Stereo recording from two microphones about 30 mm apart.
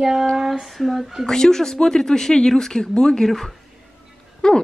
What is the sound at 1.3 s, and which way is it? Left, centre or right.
Speech, centre.